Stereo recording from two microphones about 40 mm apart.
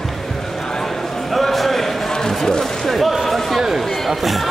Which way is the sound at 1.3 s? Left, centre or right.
Centre.